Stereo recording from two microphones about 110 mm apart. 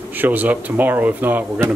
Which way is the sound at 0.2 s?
15° right (ahead or behind).